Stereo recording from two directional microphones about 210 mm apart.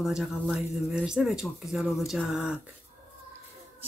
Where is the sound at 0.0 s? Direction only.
Centre (ahead or behind).